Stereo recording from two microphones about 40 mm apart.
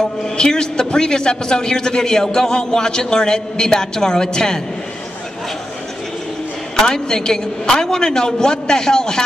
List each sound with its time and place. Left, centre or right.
0.4 s a man's voice: centre
6.8 s a man's voice: centre